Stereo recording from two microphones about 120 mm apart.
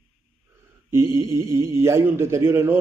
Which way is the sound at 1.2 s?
20° right (ahead or behind).